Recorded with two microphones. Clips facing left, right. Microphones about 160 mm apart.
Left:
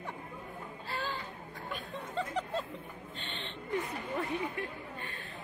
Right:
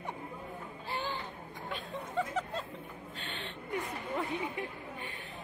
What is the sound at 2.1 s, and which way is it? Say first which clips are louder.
Snicker: even; 5° right (ahead or behind).